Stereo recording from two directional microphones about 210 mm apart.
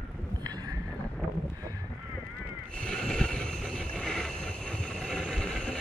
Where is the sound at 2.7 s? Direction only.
5° left (ahead or behind).